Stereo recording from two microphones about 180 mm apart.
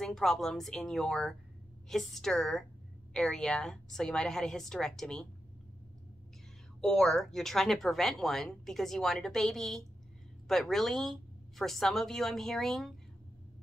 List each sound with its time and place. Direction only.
0.0 s speech: centre (ahead or behind)
6.8 s speech: centre (ahead or behind)